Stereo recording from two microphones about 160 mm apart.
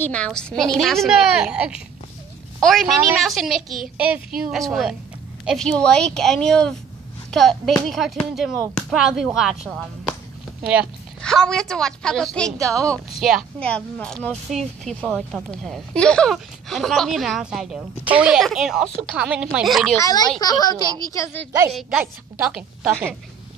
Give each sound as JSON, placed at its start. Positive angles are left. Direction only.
{"t": 0.0, "sound": "speech", "side_deg": 5}
{"t": 11.2, "sound": "speech", "side_deg": 5}
{"t": 20.0, "sound": "a woman's voice", "side_deg": 25}
{"t": 22.0, "sound": "a woman's voice", "side_deg": -10}